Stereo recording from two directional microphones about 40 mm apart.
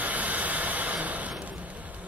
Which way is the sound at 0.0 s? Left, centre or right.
Right.